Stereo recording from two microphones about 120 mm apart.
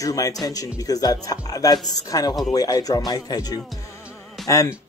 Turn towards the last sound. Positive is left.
turn(degrees=25)  # may be behind; listen again after turning